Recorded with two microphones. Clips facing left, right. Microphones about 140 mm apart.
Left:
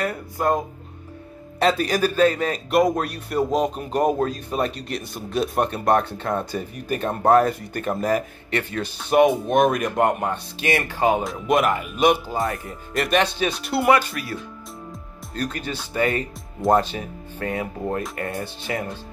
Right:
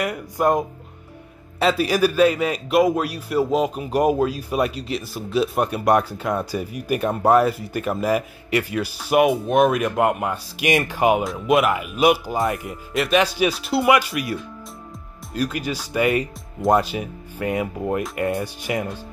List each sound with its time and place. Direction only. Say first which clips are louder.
0.0 s speech: right 3 dB; 15° right (ahead or behind)
11.2 s speech: right 2 dB; centre (ahead or behind)
13.8 s speech: even; 10° right (ahead or behind)
15.5 s speech: right 3 dB; 10° right (ahead or behind)